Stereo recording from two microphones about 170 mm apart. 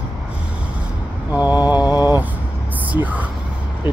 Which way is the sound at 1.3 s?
10° right (ahead or behind).